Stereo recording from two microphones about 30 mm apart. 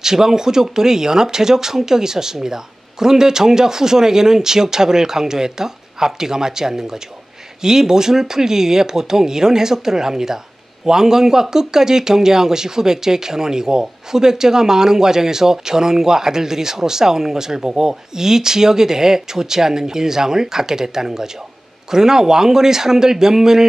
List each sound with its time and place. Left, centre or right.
0.0 s speech: centre